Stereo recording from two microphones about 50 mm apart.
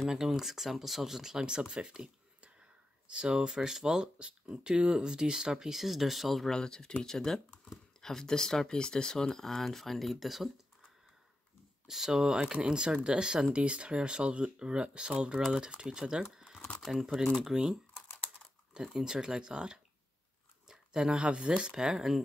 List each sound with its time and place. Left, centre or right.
0.1 s speech: centre
6.5 s speech: centre
11.9 s speech: centre
16.8 s speech: centre
21.7 s speech: centre